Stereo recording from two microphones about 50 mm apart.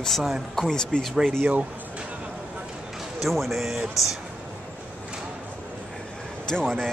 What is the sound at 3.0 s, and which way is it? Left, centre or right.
Speech, centre.